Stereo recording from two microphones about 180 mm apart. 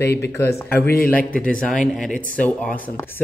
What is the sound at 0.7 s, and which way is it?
Speech, 55° left (ahead or behind).